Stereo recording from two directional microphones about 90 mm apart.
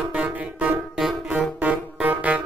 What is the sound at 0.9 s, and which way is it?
Music, 5° right (ahead or behind).